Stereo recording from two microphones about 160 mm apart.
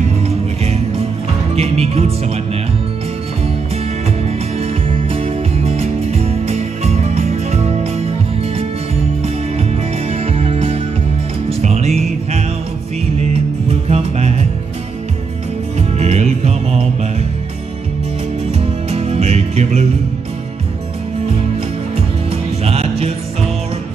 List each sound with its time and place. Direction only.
1.5 s speech: 40° right (ahead or behind)
4.6 s music: 35° right (ahead or behind)
13.7 s music: 40° right (ahead or behind)
16.0 s music: 45° right (ahead or behind)
18.5 s music: 40° right (ahead or behind)
21.9 s music: 40° right (ahead or behind)